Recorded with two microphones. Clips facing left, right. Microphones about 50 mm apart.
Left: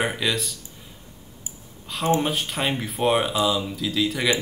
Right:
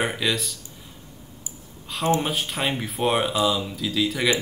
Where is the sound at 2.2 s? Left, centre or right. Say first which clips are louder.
Left 1 dB; centre.